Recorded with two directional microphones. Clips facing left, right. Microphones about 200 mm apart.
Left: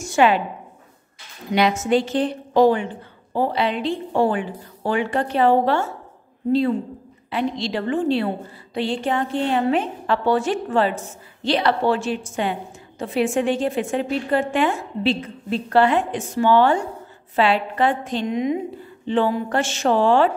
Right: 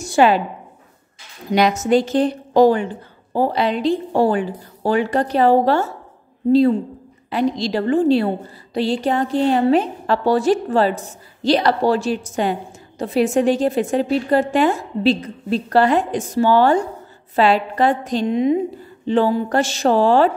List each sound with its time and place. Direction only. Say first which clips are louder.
0.0 s a sound: right 3 dB; 35° right (ahead or behind)
1.5 s a woman's voice: right 3 dB; 40° right (ahead or behind)
7.2 s a woman's voice: right 4 dB; 40° right (ahead or behind)